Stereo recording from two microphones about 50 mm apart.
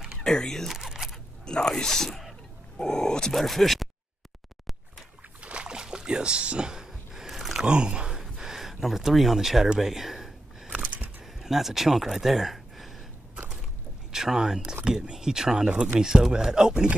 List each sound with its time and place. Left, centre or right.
0.2 s speech: centre
0.7 s single-lens reflex camera: centre
1.7 s speech: centre
3.3 s speech: centre
5.4 s a sound: right; by 7.5 s centre
7.5 s speech: centre
8.1 s a sound: centre
10.7 s a sound: right
11.3 s speech: centre
14.1 s speech: centre
15.7 s speech: right
16.0 s speech: centre